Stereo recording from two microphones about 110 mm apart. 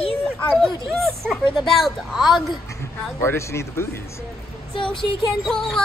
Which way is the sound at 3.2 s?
25° left (ahead or behind).